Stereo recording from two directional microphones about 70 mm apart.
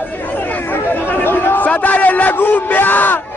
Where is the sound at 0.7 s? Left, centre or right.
Left.